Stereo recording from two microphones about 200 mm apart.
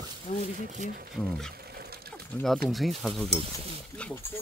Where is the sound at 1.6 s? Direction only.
50° right (ahead or behind).